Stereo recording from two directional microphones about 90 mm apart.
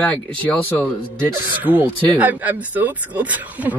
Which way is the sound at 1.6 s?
20° right (ahead or behind).